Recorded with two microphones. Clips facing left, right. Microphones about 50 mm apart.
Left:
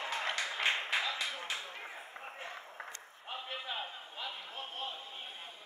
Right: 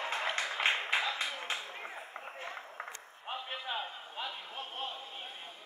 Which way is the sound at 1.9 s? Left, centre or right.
Centre.